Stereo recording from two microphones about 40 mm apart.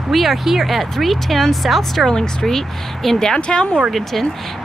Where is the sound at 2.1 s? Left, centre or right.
Centre.